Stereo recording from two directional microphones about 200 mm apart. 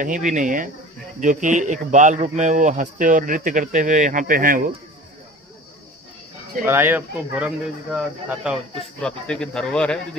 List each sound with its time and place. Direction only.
0.0 s speech: 40° right (ahead or behind)
6.6 s speech: 10° right (ahead or behind)
9.0 s speech: 5° left (ahead or behind)